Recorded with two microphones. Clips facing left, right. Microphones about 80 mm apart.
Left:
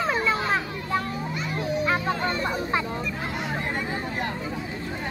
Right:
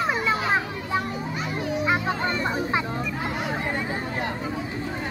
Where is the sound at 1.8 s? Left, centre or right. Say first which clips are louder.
Right 1 dB; centre.